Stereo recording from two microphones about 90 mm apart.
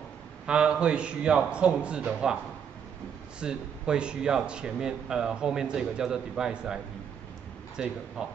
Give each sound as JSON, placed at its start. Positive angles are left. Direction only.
{"t": 0.5, "sound": "speech", "side_deg": -10}
{"t": 3.3, "sound": "speech", "side_deg": -10}